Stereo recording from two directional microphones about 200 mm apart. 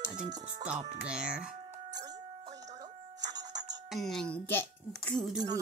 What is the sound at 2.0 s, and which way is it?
Music, 20° right (ahead or behind).